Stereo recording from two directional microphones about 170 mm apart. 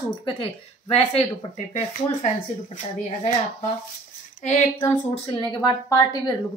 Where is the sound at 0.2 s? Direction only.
35° left (ahead or behind).